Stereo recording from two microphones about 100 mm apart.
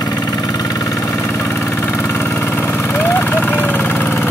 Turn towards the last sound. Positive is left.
turn(degrees=20)  # may be behind; listen again after turning